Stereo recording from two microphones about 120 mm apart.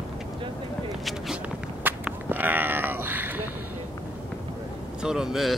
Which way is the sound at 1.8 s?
15° right (ahead or behind).